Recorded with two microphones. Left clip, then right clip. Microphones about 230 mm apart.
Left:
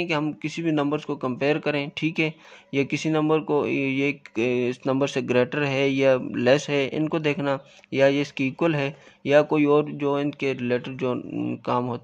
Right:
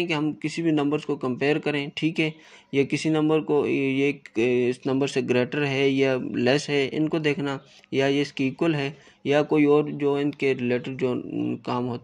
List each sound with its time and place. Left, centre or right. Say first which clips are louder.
0.0 s speech: even; centre